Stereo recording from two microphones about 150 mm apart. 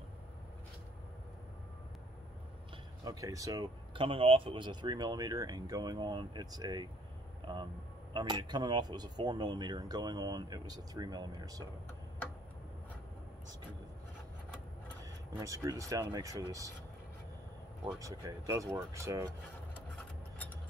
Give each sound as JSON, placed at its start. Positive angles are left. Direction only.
{"t": 3.1, "sound": "speech", "side_deg": -20}
{"t": 8.1, "sound": "speech", "side_deg": -30}
{"t": 15.3, "sound": "speech", "side_deg": -20}
{"t": 17.9, "sound": "speech", "side_deg": -20}
{"t": 20.0, "sound": "a sound", "side_deg": 10}